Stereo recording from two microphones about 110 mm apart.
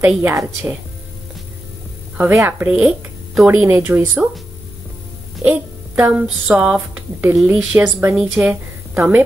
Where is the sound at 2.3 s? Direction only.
20° right (ahead or behind).